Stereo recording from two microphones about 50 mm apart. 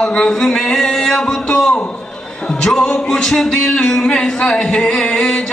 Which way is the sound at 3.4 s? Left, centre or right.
Centre.